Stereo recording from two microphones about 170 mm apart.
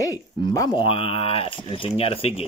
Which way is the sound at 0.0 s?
20° left (ahead or behind).